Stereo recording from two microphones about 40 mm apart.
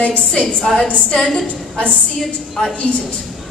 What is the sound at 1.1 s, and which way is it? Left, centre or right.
Speech, centre.